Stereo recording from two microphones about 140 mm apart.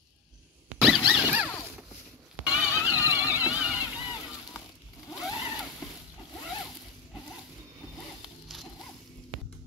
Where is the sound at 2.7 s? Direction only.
20° left (ahead or behind).